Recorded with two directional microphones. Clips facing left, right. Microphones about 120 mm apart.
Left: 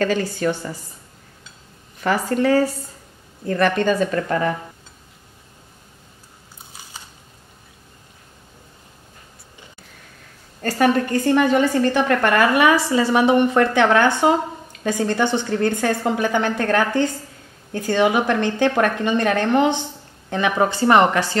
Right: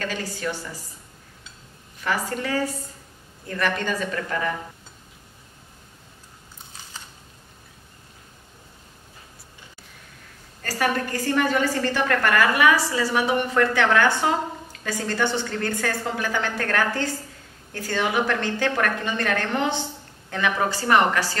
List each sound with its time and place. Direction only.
0.0 s speech: 45° left (ahead or behind)
2.0 s speech: 40° left (ahead or behind)
3.8 s speech: 35° left (ahead or behind)
10.6 s a woman's voice: 25° left (ahead or behind)